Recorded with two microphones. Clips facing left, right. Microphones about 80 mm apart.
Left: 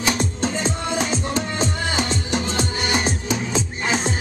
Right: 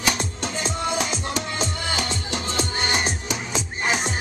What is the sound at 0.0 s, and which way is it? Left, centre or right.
Music, left.